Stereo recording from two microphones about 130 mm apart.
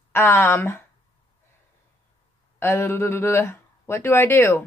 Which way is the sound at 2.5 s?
20° left (ahead or behind).